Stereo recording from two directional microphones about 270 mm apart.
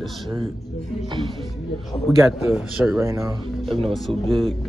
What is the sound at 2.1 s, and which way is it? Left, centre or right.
A man's voice, centre.